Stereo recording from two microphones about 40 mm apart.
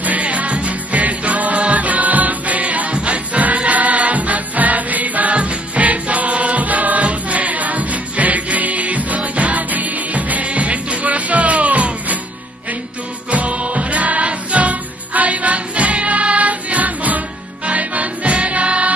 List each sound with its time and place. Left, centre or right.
0.0 s music: right
13.3 s music: right